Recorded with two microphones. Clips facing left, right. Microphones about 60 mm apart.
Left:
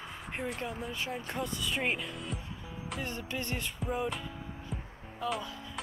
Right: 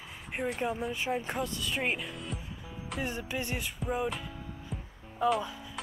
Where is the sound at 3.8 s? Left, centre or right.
Centre.